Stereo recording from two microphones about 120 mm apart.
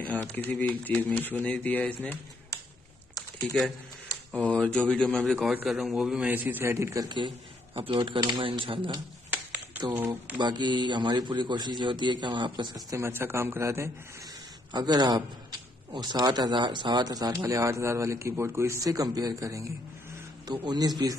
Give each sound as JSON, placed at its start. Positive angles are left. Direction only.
{"t": 0.0, "sound": "speech", "side_deg": 10}
{"t": 4.3, "sound": "a man's voice", "side_deg": 5}
{"t": 7.1, "sound": "speech", "side_deg": -40}
{"t": 9.3, "sound": "a sound", "side_deg": -15}
{"t": 10.4, "sound": "a man's voice", "side_deg": -40}
{"t": 12.9, "sound": "speech", "side_deg": -20}
{"t": 14.7, "sound": "a man's voice", "side_deg": -35}